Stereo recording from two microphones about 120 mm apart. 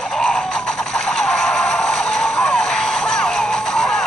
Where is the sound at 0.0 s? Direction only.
5° left (ahead or behind).